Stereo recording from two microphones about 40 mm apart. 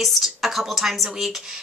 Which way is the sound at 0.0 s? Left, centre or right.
Centre.